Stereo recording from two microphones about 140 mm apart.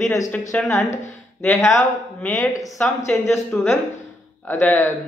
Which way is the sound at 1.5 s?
20° left (ahead or behind).